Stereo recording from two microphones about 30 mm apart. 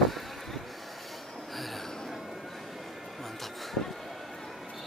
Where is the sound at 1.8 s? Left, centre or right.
Centre.